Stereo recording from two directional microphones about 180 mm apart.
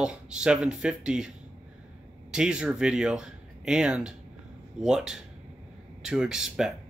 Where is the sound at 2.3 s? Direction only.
5° right (ahead or behind).